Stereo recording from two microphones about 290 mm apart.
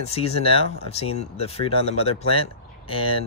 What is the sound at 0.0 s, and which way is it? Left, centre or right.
Speech, left.